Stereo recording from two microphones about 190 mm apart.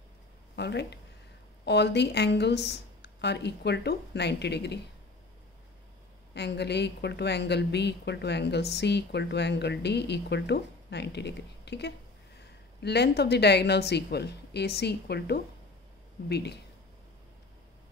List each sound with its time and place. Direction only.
0.6 s a woman's voice: 65° left (ahead or behind)
6.3 s a woman's voice: 60° left (ahead or behind)